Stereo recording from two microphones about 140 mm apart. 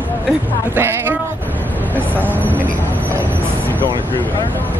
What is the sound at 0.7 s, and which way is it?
Speech, 15° right (ahead or behind).